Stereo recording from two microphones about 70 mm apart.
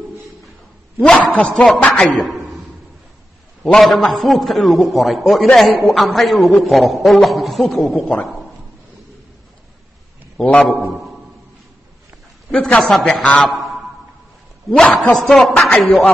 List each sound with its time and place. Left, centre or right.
1.0 s a man's voice: centre
1.5 s a man's voice: centre
1.8 s a man's voice: left
2.0 s a man's voice: centre
3.6 s a man's voice: centre
10.3 s a man's voice: centre
12.4 s a man's voice: centre